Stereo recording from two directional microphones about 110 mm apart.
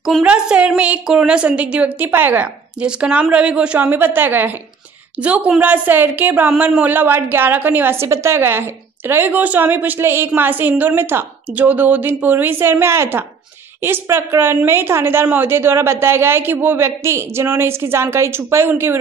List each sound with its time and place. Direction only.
0.2 s a woman's voice: 10° right (ahead or behind)